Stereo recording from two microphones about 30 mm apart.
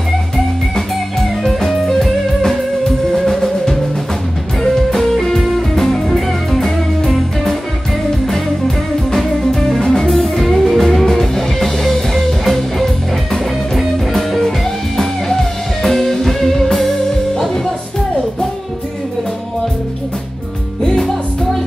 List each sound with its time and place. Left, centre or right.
1.7 s music: centre